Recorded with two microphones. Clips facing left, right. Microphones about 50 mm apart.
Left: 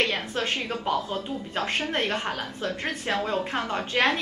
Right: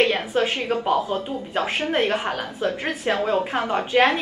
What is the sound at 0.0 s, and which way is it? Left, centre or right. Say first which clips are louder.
A woman's voice: right 6 dB; centre.